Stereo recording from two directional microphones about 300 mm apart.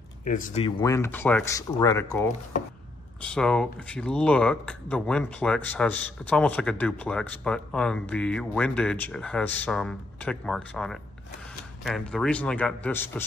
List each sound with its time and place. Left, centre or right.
0.3 s speech: left
0.7 s speech: centre
3.3 s speech: centre